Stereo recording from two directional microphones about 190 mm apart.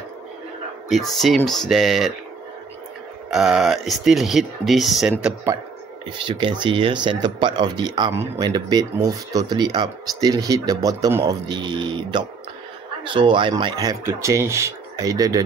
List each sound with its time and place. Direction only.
0.8 s speech: centre (ahead or behind)
3.3 s speech: 5° right (ahead or behind)
6.0 s speech: 25° right (ahead or behind)